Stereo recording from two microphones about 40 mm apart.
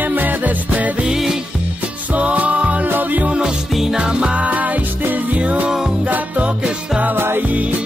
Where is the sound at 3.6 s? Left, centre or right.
Centre.